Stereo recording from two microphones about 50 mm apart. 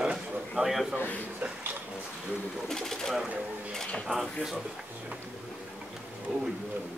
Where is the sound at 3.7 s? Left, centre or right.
Centre.